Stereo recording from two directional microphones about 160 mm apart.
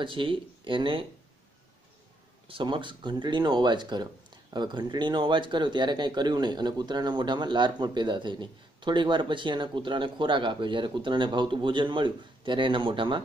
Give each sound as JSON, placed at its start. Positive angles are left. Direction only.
{"t": 0.0, "sound": "speech", "side_deg": -30}
{"t": 2.4, "sound": "speech", "side_deg": -30}